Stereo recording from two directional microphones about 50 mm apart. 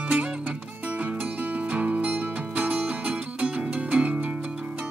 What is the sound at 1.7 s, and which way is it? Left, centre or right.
Music, right.